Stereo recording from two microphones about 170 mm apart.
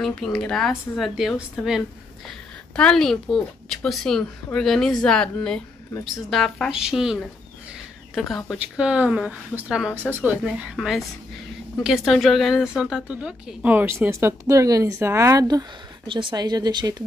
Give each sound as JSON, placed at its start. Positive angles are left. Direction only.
{"t": 0.0, "sound": "a woman's voice", "side_deg": 5}